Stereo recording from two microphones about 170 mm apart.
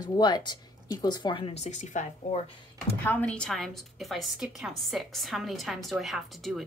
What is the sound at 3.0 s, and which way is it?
A woman's voice, 10° left (ahead or behind).